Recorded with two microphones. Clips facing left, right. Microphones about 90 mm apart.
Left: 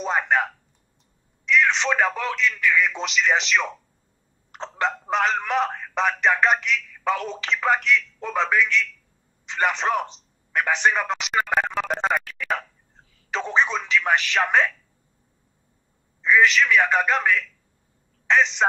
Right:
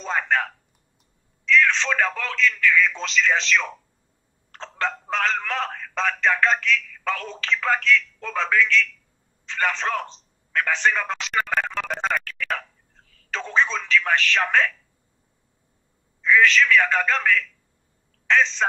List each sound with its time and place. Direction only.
0.0 s telephone: 20° left (ahead or behind)
1.4 s speech: 20° left (ahead or behind)
9.5 s telephone: 20° left (ahead or behind)
16.2 s speech: 20° left (ahead or behind)